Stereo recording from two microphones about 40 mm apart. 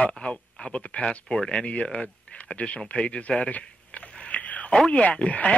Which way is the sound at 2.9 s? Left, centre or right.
Left.